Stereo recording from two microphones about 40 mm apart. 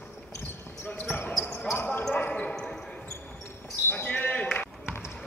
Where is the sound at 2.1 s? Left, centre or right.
Left.